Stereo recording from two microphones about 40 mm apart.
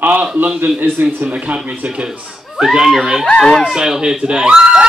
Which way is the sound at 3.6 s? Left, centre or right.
Centre.